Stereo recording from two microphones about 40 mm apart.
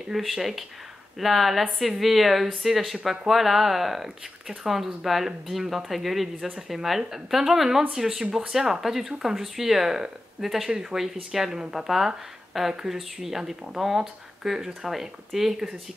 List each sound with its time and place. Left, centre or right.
0.1 s speech: centre
8.2 s speech: centre
8.5 s speech: centre